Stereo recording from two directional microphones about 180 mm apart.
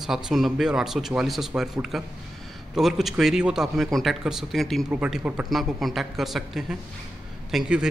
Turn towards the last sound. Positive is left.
turn(degrees=-5)  # may be behind; listen again after turning